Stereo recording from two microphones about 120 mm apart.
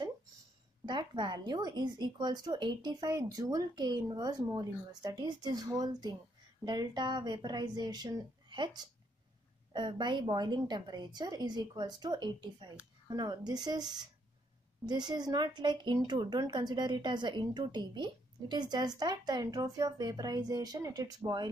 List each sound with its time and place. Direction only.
0.8 s speech: 40° right (ahead or behind)